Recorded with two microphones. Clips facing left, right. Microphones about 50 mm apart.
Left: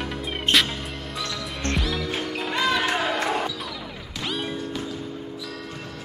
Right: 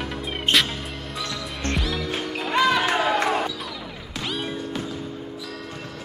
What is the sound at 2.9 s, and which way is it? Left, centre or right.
Basketball bounce, centre.